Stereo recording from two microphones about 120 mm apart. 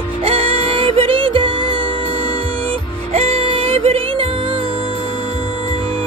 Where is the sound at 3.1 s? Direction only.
55° right (ahead or behind).